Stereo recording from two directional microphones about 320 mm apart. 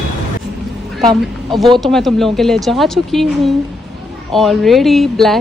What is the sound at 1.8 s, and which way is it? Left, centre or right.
Speech, centre.